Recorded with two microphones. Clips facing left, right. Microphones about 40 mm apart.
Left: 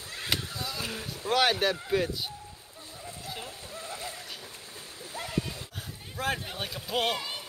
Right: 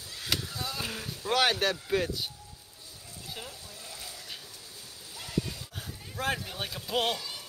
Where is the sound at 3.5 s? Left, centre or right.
Left.